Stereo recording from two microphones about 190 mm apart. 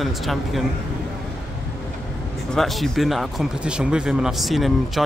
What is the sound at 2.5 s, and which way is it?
Speech, centre (ahead or behind).